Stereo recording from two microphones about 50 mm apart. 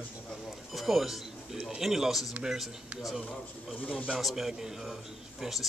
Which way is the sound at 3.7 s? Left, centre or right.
Left.